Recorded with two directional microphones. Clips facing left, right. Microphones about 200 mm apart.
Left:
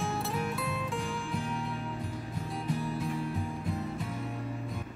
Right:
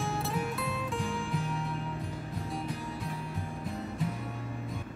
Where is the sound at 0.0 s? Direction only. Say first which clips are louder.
Even; centre (ahead or behind).